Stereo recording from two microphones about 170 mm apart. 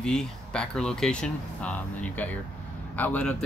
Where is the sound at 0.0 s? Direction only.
5° left (ahead or behind).